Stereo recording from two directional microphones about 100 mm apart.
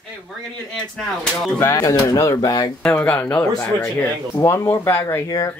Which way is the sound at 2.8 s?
15° left (ahead or behind).